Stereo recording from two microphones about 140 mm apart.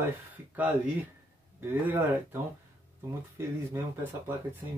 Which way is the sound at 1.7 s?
15° right (ahead or behind).